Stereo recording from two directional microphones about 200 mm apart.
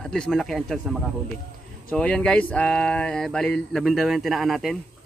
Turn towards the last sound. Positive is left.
turn(degrees=0)  # may be behind; listen again after turning